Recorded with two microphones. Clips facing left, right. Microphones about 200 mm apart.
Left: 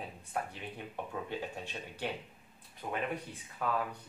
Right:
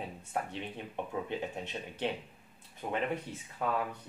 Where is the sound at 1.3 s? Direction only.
20° right (ahead or behind).